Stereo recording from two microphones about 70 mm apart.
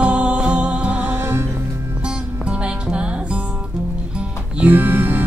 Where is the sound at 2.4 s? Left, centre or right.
Centre.